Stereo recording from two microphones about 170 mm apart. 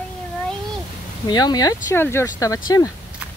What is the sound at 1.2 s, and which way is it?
Speech, 25° left (ahead or behind).